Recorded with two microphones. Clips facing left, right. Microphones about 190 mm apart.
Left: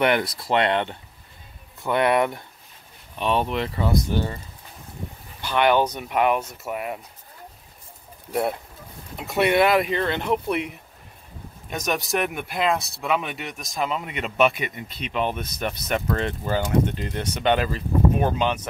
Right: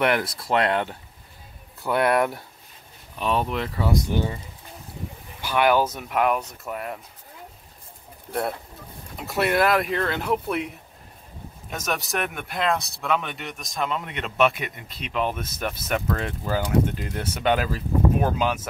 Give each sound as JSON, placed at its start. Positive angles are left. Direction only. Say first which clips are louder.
{"t": 0.0, "sound": "speech", "louder": "left 1 dB", "side_deg": 0}
{"t": 4.1, "sound": "speech", "louder": "even", "side_deg": -15}
{"t": 5.4, "sound": "speech", "louder": "left 1 dB", "side_deg": -5}
{"t": 8.3, "sound": "speech", "louder": "left 3 dB", "side_deg": 0}
{"t": 11.7, "sound": "speech", "louder": "left 3 dB", "side_deg": 0}